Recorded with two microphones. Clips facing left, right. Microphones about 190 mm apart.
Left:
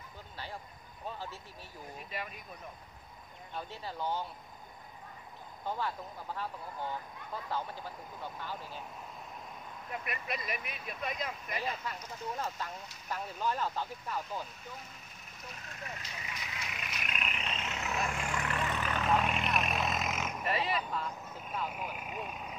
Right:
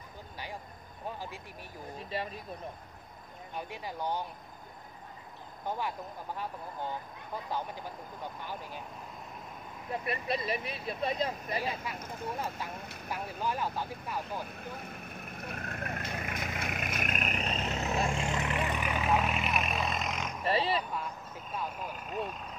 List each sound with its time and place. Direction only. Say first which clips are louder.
1.0 s speech: right 2 dB; 15° right (ahead or behind)
2.0 s speech: right 6 dB; 30° right (ahead or behind)
3.5 s speech: right 2 dB; 15° right (ahead or behind)
5.7 s speech: right 1 dB; 15° right (ahead or behind)
9.8 s speech: right 6 dB; 30° right (ahead or behind)
12.0 s speech: right 2 dB; 55° right (ahead or behind)
12.4 s speech: right 1 dB; 10° right (ahead or behind)
12.7 s speech: right 4 dB; 60° right (ahead or behind)
13.1 s speech: even; 10° right (ahead or behind)
14.4 s vehicle: right 5 dB; 60° right (ahead or behind); by 20.4 s 5° left (ahead or behind)
20.4 s speech: right 4 dB; 30° right (ahead or behind)
21.6 s speech: right 1 dB; 10° left (ahead or behind)